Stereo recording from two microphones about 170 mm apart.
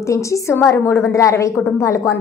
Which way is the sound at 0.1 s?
15° left (ahead or behind).